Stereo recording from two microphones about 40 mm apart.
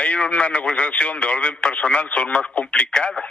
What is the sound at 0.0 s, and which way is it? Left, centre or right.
Speech, left.